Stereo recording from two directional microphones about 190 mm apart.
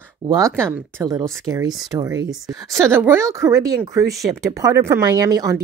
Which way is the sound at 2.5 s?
15° right (ahead or behind).